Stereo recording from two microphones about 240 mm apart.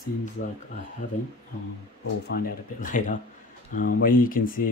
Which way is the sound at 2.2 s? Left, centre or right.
Left.